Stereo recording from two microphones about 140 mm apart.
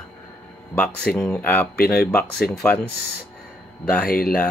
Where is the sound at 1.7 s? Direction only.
90° left.